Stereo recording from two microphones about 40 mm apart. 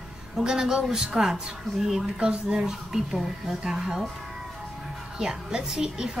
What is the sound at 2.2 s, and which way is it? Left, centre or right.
Speech, right.